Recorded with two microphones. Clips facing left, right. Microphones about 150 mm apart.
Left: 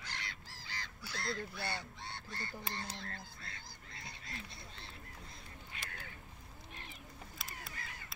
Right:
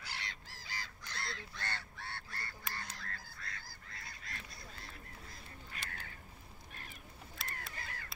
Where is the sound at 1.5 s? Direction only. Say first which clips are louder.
Left 3 dB; 10° left (ahead or behind).